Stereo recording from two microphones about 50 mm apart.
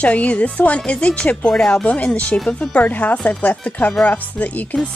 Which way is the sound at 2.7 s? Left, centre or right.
Left.